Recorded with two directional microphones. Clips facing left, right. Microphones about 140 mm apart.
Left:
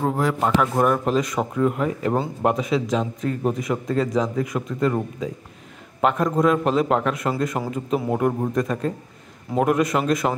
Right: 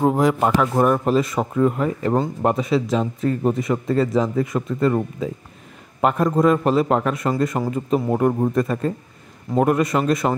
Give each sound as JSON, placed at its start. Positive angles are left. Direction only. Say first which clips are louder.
{"t": 0.0, "sound": "speech", "louder": "right 4 dB", "side_deg": -15}
{"t": 0.6, "sound": "speech", "louder": "right 2 dB", "side_deg": 0}